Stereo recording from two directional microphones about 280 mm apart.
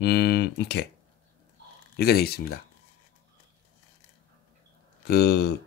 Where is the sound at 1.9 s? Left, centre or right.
Left.